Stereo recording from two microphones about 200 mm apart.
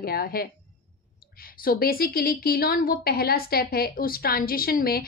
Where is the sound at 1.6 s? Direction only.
50° left (ahead or behind).